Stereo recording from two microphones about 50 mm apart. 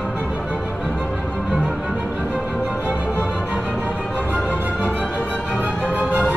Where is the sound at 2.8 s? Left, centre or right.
Right.